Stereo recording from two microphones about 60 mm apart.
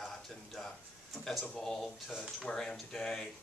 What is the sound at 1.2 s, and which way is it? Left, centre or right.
Speech, centre.